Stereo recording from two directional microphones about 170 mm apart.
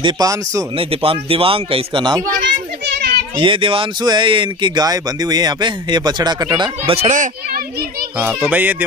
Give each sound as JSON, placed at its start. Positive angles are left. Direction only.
{"t": 0.0, "sound": "speech", "side_deg": -20}
{"t": 0.7, "sound": "speech", "side_deg": -35}
{"t": 2.4, "sound": "children playing", "side_deg": -85}
{"t": 3.3, "sound": "speech", "side_deg": -30}
{"t": 6.9, "sound": "speech", "side_deg": -40}
{"t": 8.5, "sound": "speech", "side_deg": -10}